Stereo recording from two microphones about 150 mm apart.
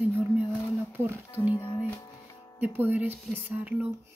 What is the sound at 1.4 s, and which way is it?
Speech, 35° left (ahead or behind).